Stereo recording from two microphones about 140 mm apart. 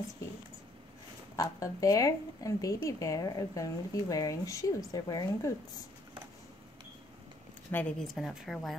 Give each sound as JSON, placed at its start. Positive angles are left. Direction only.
{"t": 1.3, "sound": "a woman's voice", "side_deg": 25}
{"t": 7.7, "sound": "a woman's voice", "side_deg": 5}